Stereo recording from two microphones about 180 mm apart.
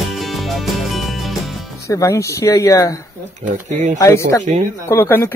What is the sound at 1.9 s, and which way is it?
Speech, 15° left (ahead or behind).